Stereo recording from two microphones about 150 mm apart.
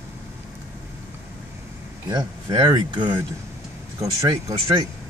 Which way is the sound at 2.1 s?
25° right (ahead or behind).